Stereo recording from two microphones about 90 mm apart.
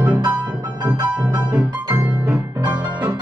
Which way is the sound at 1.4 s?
15° right (ahead or behind).